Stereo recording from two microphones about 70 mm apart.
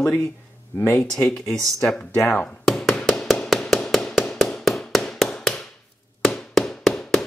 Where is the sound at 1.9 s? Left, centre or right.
Centre.